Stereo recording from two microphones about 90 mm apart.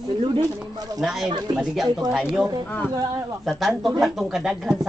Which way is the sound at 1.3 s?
55° right (ahead or behind).